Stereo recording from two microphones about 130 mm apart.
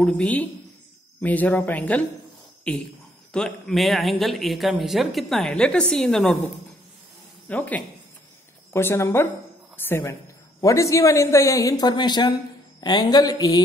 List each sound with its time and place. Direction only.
0.0 s a woman's voice: 10° left (ahead or behind)
7.4 s a woman's voice: 10° left (ahead or behind); by 13.6 s 30° left (ahead or behind)